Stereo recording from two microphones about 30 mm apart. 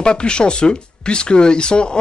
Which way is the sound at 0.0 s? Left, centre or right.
Left.